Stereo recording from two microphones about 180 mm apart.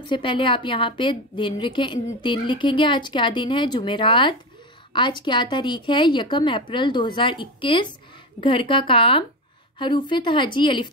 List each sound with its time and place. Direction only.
0.0 s a woman's voice: 25° left (ahead or behind)